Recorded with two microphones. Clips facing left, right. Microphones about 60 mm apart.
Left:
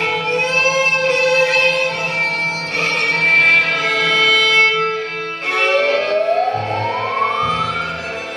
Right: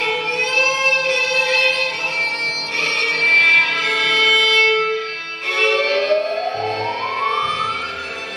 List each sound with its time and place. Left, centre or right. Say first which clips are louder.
3.3 s music: even; centre